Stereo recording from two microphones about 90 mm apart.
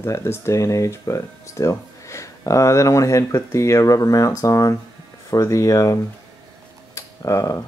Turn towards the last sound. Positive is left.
turn(degrees=35)  # may be behind; listen again after turning